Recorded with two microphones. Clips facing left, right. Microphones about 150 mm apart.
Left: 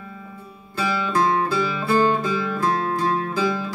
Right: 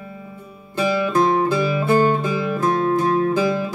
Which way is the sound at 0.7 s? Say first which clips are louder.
Right 4 dB; 20° right (ahead or behind).